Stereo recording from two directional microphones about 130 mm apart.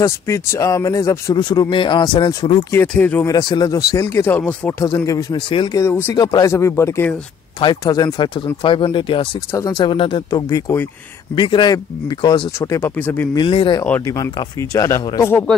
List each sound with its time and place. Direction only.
0.0 s speech: 20° left (ahead or behind); by 2.6 s 40° left (ahead or behind)
2.9 s speech: 10° left (ahead or behind)
3.3 s speech: 35° left (ahead or behind); by 4.8 s 10° left (ahead or behind)
4.8 s speech: 25° left (ahead or behind)
5.5 s speech: 40° left (ahead or behind)
5.8 s speech: 20° left (ahead or behind)
6.1 s speech: 30° left (ahead or behind)
7.6 s speech: 30° left (ahead or behind)
9.5 s speech: 30° left (ahead or behind)
12.5 s speech: 20° left (ahead or behind)
13.3 s speech: 40° left (ahead or behind)
14.0 s speech: 30° left (ahead or behind)